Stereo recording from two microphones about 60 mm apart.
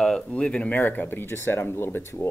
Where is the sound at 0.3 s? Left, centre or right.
Centre.